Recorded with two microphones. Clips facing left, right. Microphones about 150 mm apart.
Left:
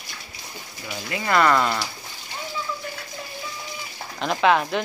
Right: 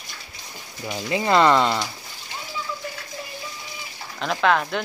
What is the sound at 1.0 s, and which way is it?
Speech, 25° right (ahead or behind).